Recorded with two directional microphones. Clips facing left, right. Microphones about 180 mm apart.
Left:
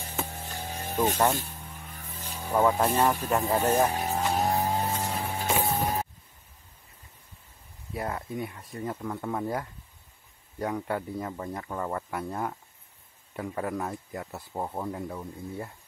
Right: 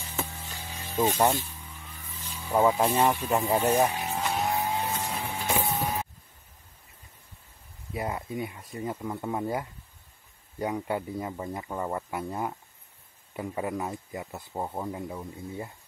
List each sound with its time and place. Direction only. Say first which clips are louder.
0.0 s a sound: left 1 dB; 50° left (ahead or behind)
0.9 s speech: right 1 dB; 15° right (ahead or behind)
2.0 s vehicle: left 3 dB; 50° left (ahead or behind)
2.5 s speech: right 1 dB; 15° right (ahead or behind)
3.9 s music: left 3 dB; 40° left (ahead or behind)
7.9 s speech: right 1 dB; 5° right (ahead or behind)